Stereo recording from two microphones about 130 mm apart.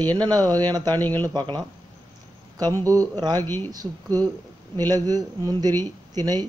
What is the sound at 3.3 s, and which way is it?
Speech, 15° left (ahead or behind).